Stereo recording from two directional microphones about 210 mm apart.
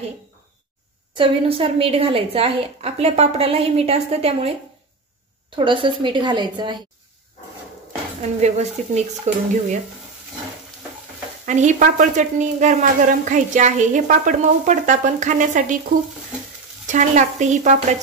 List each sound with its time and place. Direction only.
1.1 s a woman's voice: 25° right (ahead or behind)
5.6 s a woman's voice: 25° right (ahead or behind)
8.2 s a woman's voice: 35° right (ahead or behind)
11.4 s a woman's voice: 35° right (ahead or behind)